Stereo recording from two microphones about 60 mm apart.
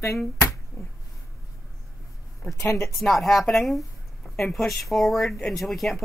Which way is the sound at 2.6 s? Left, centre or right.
Left.